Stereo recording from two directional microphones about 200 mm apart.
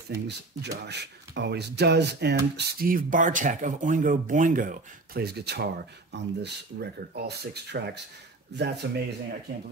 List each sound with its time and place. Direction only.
0.1 s speech: 55° right (ahead or behind)
2.5 s speech: 45° right (ahead or behind)